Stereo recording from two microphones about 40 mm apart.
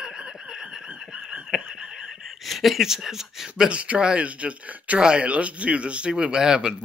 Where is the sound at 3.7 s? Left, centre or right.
Right.